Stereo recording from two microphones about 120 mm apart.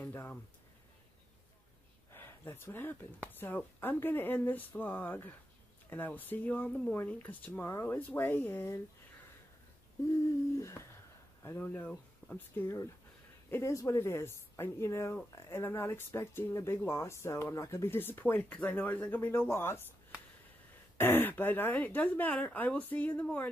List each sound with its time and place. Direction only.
0.0 s speech: 20° left (ahead or behind)
2.1 s speech: 20° left (ahead or behind)
10.6 s a sound: 20° left (ahead or behind)
11.5 s speech: 15° left (ahead or behind)
21.0 s speech: 15° left (ahead or behind)